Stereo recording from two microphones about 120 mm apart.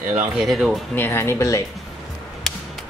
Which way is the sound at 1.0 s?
20° left (ahead or behind).